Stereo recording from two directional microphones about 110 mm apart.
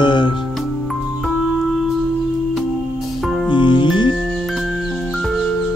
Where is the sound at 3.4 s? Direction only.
45° left (ahead or behind).